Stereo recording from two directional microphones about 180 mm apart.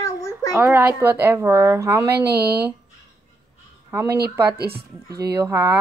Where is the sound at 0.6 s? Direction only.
10° right (ahead or behind).